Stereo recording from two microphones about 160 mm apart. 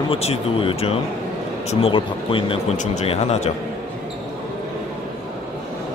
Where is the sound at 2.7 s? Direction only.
45° left (ahead or behind).